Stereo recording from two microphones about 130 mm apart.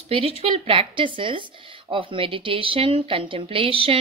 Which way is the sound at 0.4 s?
45° right (ahead or behind).